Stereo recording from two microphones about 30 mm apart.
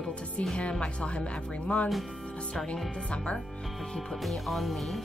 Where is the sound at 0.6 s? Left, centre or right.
Left.